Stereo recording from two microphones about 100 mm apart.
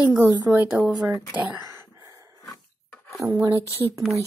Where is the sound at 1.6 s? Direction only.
40° right (ahead or behind).